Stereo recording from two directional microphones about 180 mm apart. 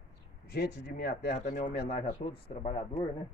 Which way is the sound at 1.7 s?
60° left (ahead or behind).